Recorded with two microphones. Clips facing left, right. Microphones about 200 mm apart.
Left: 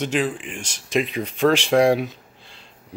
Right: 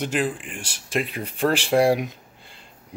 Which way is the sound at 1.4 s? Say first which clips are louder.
Left 3 dB; 10° right (ahead or behind).